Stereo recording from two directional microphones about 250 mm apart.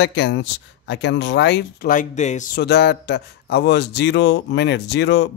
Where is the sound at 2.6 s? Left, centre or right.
Left.